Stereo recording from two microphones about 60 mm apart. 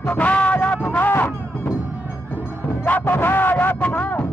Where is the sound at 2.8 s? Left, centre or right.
Left.